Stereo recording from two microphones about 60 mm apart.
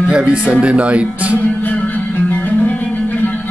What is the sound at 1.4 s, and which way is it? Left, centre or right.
Music, left.